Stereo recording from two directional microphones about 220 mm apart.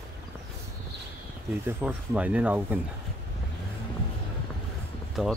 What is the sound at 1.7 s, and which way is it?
Speech, 5° right (ahead or behind).